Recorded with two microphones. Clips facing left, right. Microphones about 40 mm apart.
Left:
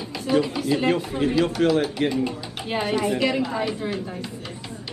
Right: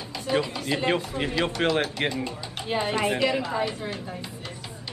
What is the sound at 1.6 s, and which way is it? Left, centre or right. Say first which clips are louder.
Speech: left 4 dB; right.